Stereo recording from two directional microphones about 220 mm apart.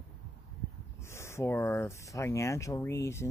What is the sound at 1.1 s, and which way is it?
Speech, 10° left (ahead or behind).